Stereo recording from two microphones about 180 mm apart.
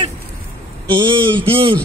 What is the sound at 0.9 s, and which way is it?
Speech, 25° right (ahead or behind).